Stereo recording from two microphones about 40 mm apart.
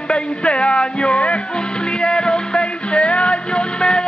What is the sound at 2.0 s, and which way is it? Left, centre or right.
Music, left.